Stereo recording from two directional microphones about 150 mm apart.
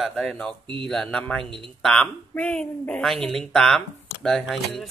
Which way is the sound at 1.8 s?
5° left (ahead or behind).